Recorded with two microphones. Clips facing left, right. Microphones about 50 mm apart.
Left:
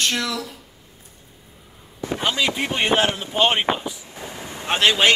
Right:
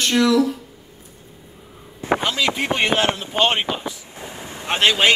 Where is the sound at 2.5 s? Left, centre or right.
Right.